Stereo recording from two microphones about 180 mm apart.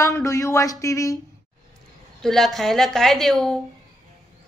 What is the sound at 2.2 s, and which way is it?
Speech, centre (ahead or behind).